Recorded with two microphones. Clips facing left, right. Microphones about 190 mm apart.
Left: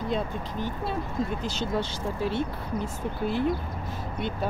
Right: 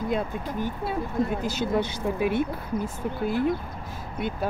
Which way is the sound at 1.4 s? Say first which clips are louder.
Right 3 dB; 55° right (ahead or behind).